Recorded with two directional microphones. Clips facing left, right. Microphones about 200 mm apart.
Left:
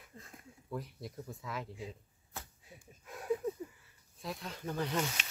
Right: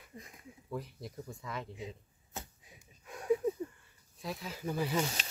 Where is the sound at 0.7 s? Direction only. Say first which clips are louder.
Right 1 dB; centre (ahead or behind).